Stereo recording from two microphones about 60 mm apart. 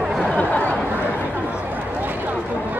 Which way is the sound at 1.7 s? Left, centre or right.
Right.